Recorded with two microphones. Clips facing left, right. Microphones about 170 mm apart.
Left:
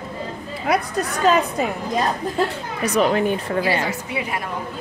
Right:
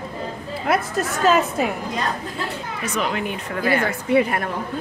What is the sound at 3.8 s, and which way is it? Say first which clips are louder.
Speech: right 7 dB; 55° right (ahead or behind).